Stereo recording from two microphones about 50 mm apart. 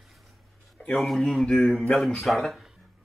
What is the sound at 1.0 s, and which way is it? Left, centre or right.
Speech, centre.